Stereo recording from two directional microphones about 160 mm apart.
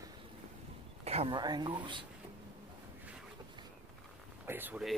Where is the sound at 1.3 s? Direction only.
25° right (ahead or behind).